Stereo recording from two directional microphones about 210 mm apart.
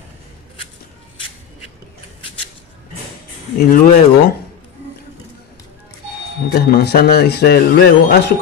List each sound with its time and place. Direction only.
3.5 s a man's voice: 45° left (ahead or behind)
6.5 s a man's voice: 50° left (ahead or behind)